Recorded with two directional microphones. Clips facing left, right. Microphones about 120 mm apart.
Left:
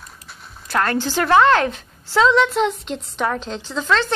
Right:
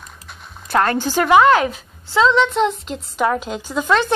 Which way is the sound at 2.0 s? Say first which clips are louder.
Even; centre (ahead or behind).